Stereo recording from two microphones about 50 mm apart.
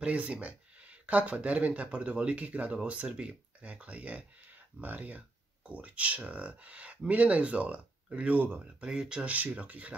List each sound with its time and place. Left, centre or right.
0.0 s speech: right
8.8 s speech: centre
9.2 s speech: right